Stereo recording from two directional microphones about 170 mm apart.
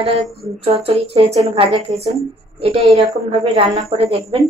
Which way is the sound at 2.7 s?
Centre (ahead or behind).